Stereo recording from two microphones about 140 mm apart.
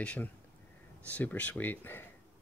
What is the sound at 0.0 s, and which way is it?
Speech, 10° left (ahead or behind).